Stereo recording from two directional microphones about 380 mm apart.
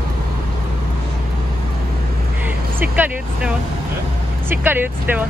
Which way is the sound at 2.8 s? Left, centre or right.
Centre.